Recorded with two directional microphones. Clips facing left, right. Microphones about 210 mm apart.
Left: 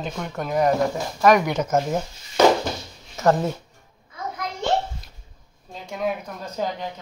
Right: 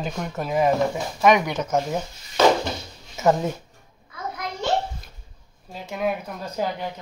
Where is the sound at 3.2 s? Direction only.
5° right (ahead or behind).